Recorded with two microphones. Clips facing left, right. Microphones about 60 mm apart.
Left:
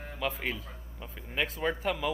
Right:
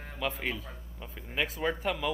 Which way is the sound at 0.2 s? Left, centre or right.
Centre.